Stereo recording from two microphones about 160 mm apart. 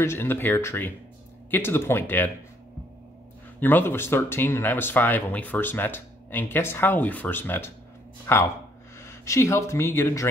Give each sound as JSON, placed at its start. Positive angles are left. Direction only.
{"t": 0.0, "sound": "speech", "side_deg": 15}
{"t": 3.5, "sound": "speech", "side_deg": 10}